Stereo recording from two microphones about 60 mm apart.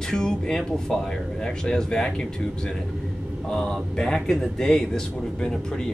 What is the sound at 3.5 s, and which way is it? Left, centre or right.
A man's voice, centre.